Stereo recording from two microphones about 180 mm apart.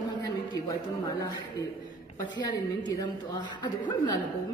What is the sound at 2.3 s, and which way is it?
A woman's voice, 20° left (ahead or behind).